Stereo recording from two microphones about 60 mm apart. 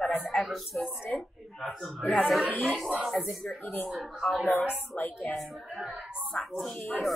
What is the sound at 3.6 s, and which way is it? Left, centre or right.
Speech, left.